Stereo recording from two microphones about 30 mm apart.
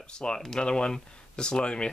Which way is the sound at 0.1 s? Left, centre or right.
Left.